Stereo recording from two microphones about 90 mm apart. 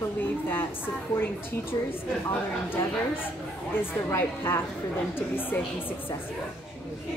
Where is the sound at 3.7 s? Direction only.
25° left (ahead or behind).